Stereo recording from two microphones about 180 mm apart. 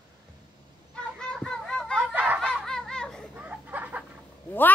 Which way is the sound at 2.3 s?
5° left (ahead or behind).